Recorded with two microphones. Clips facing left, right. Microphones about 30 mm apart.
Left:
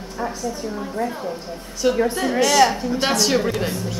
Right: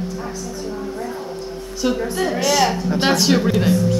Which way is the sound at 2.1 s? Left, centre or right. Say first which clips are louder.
Left 1 dB; centre.